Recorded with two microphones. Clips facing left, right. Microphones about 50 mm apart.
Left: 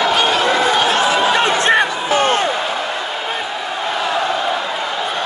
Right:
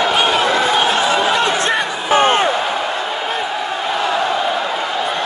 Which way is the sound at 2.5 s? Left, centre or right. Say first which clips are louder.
Right 2 dB; centre.